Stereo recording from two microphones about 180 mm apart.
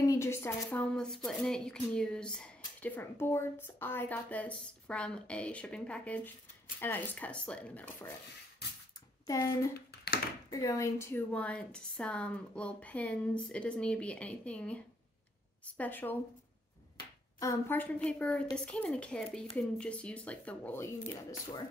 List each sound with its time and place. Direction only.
0.0 s speech: 15° left (ahead or behind)
9.2 s speech: 20° left (ahead or behind)
9.8 s a sound: 60° left (ahead or behind)
10.5 s a woman's voice: 20° left (ahead or behind)
17.4 s a woman's voice: 15° left (ahead or behind)